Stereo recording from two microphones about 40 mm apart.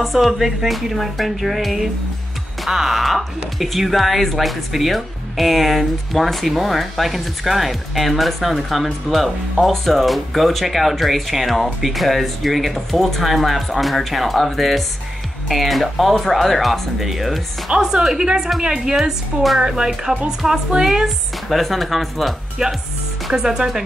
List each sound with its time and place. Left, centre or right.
0.0 s speech: centre
17.6 s a woman's voice: centre
18.9 s a woman's voice: centre
21.5 s speech: centre
22.6 s a woman's voice: centre